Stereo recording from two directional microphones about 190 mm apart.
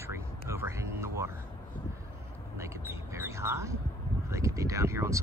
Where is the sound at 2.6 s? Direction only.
15° right (ahead or behind).